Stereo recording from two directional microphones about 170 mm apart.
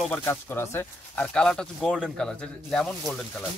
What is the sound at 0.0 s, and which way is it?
Speech, 10° left (ahead or behind).